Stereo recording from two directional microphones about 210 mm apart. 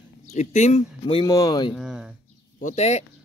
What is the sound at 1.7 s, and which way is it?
Speech, centre (ahead or behind).